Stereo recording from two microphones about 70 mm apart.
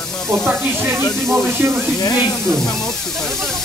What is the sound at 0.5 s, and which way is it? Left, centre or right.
Speech, right.